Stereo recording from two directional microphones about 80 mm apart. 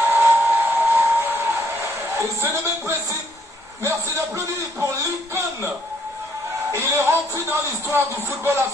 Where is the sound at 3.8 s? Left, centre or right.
Right.